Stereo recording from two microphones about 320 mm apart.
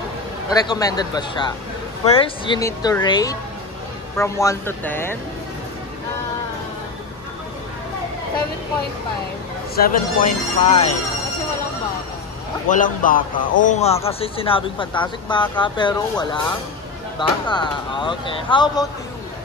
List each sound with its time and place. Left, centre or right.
0.5 s speech: centre
9.8 s speech: left
12.6 s speech: left
17.5 s speech: centre